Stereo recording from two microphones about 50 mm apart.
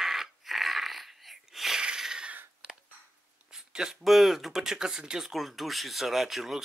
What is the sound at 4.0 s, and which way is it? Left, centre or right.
Speech, centre.